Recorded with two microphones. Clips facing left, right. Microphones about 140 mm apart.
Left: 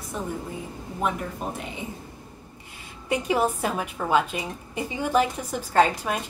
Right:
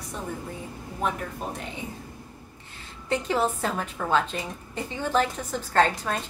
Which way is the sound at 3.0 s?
10° left (ahead or behind).